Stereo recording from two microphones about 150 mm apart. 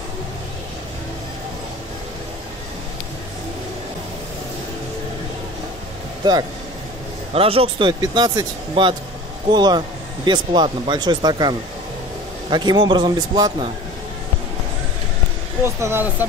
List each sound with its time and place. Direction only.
7.3 s speech: 40° right (ahead or behind)
8.0 s speech: 25° right (ahead or behind)
15.6 s speech: 15° right (ahead or behind)